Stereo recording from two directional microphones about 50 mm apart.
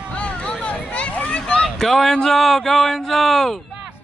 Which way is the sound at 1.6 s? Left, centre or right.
Centre.